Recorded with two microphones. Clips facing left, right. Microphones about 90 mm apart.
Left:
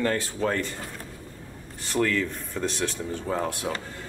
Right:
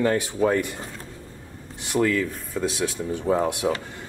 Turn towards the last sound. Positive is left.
turn(degrees=-15)  # may be behind; listen again after turning